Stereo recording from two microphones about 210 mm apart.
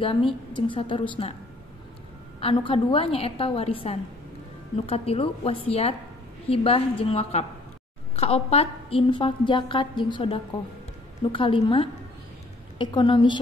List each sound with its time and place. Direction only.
0.0 s a woman's voice: 25° left (ahead or behind)
2.4 s a woman's voice: 25° left (ahead or behind)